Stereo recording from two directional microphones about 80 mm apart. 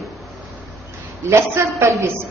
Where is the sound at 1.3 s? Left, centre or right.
Right.